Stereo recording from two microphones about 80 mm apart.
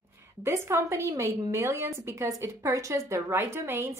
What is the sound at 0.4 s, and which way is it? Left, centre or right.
A woman's voice, right.